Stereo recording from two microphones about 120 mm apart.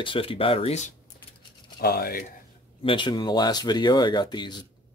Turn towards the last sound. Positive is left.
turn(degrees=40)  # may be behind; listen again after turning